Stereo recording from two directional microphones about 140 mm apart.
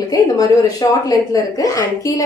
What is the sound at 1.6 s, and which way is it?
Speech, 25° left (ahead or behind).